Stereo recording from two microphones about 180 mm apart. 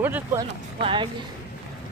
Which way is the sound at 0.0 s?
10° right (ahead or behind).